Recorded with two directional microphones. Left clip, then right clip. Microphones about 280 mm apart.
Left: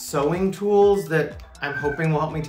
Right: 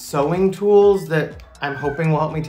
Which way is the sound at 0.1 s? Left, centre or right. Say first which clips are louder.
Right 4 dB; centre.